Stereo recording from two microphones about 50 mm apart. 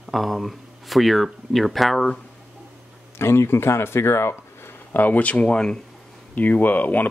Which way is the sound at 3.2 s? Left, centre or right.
Left.